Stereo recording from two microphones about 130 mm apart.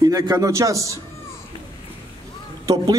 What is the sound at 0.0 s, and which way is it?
Speech, 30° right (ahead or behind).